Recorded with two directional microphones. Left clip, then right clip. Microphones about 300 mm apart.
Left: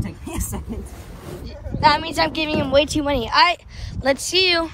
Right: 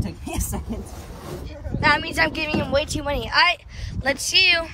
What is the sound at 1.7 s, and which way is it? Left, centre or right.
Speech, centre.